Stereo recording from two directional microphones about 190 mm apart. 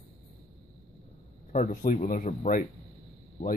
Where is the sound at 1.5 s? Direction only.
40° left (ahead or behind).